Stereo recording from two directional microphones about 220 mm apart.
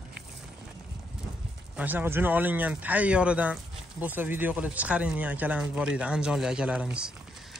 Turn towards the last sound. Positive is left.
turn(degrees=-5)  # may be behind; listen again after turning